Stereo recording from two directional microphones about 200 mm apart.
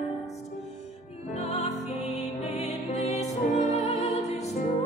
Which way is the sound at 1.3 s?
35° left (ahead or behind).